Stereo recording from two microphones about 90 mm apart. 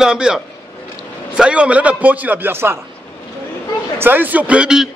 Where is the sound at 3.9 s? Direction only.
20° right (ahead or behind).